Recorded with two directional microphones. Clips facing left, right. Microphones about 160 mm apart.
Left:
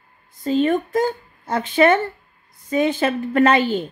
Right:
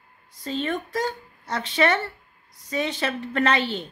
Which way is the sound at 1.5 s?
30° left (ahead or behind).